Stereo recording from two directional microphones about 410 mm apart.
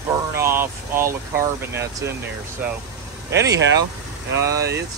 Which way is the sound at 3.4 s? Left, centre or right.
Right.